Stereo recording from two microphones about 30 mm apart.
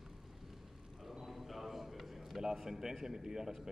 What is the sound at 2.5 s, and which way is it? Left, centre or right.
Speech, centre.